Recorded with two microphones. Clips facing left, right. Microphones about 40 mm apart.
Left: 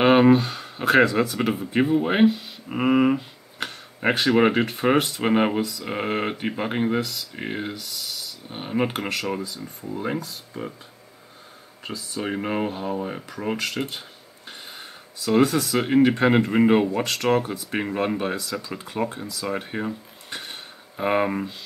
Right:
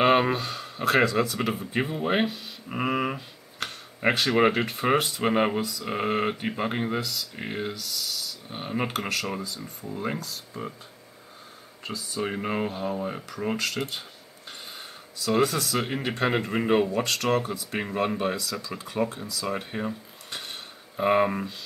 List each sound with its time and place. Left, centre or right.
0.0 s speech: centre
1.3 s speech: centre
7.0 s speech: left
11.8 s speech: centre
17.2 s speech: left
17.7 s speech: centre